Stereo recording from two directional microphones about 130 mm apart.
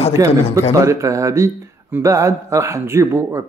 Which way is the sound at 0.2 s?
25° right (ahead or behind).